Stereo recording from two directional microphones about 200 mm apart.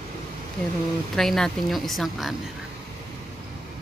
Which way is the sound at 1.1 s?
Centre (ahead or behind).